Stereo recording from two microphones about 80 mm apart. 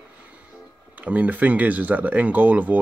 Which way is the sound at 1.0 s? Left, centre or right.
Centre.